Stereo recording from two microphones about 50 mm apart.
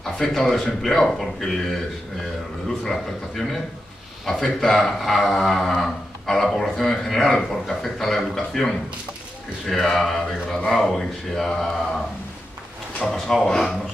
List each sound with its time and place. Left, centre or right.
0.0 s speech: centre
2.8 s speech: centre
13.0 s speech: centre